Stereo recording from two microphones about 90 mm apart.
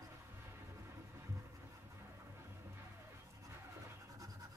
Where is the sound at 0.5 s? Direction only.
30° right (ahead or behind).